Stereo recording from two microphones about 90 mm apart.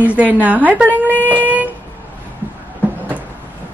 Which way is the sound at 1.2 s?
20° right (ahead or behind).